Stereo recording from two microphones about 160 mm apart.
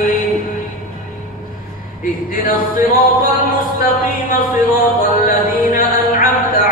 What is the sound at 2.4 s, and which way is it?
Music, 60° left (ahead or behind).